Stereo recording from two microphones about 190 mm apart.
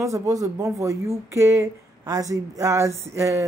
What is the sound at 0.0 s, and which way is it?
Speech, 15° right (ahead or behind).